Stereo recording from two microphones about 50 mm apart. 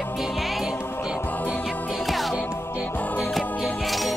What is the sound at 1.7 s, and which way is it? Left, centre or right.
Music, centre.